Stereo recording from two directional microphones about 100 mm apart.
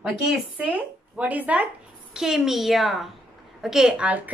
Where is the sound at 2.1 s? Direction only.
5° right (ahead or behind).